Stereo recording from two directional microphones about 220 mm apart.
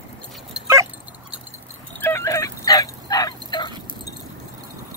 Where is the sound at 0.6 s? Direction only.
15° right (ahead or behind).